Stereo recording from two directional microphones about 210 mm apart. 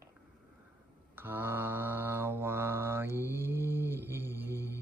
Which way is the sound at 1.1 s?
10° right (ahead or behind).